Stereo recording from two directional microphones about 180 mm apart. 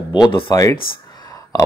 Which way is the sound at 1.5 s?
20° left (ahead or behind).